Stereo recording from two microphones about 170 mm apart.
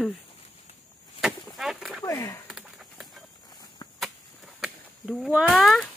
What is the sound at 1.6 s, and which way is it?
Speech, centre (ahead or behind).